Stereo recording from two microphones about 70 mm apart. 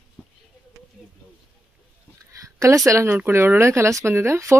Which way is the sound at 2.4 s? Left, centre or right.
Right.